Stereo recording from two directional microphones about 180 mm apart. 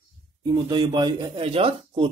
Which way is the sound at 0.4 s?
25° right (ahead or behind).